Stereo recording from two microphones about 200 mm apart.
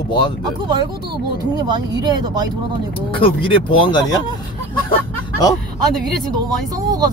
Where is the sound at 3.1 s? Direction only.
25° left (ahead or behind).